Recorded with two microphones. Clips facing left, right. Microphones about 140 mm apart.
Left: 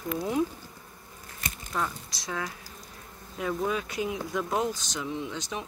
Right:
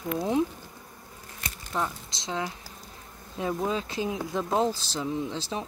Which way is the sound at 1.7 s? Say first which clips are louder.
Right 2 dB; 20° right (ahead or behind).